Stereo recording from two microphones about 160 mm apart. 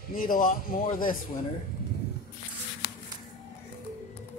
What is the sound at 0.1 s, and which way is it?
A man's voice, 60° left (ahead or behind).